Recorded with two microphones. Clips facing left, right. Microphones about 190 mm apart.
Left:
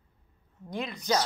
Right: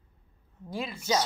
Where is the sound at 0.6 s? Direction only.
5° right (ahead or behind).